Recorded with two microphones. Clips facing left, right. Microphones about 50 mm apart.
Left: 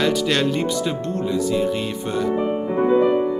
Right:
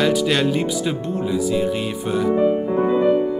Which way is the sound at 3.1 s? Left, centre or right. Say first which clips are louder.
Right 1 dB; centre.